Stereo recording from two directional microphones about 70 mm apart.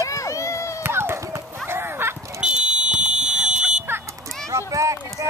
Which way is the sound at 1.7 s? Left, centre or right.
Right.